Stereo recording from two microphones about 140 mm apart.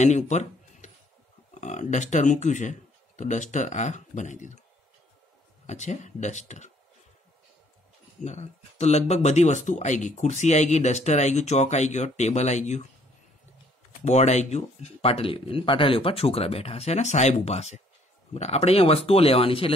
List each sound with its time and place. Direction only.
0.0 s a sound: 55° left (ahead or behind)
1.5 s speech: 60° left (ahead or behind)
5.7 s speech: 55° left (ahead or behind)
8.2 s speech: 55° left (ahead or behind)
14.0 s speech: 55° left (ahead or behind)